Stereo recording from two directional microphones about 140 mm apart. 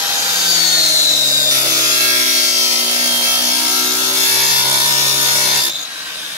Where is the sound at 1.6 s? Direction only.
25° right (ahead or behind).